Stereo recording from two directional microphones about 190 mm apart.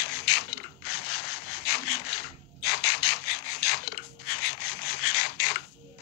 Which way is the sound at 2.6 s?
55° left (ahead or behind).